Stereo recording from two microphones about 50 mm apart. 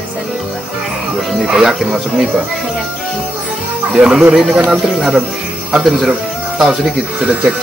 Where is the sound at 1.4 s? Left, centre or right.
Centre.